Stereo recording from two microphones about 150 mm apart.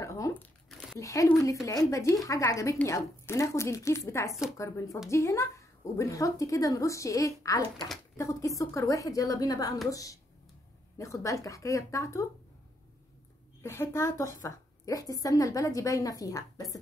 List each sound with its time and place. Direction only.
0.0 s speech: 20° left (ahead or behind)
0.7 s a sound: centre (ahead or behind)
0.9 s a woman's voice: 20° left (ahead or behind)
13.6 s a woman's voice: 20° left (ahead or behind)